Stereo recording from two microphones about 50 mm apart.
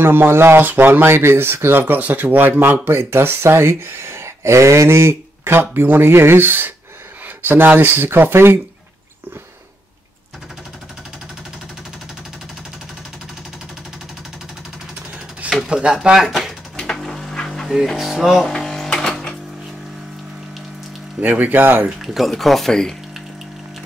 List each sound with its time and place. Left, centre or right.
0.0 s speech: right
1.0 s speech: right
2.0 s speech: right
15.6 s speech: centre
16.7 s a sound: centre
17.5 s speech: centre
18.5 s a sound: centre
18.9 s sewing machine: centre
21.2 s speech: right
22.0 s speech: centre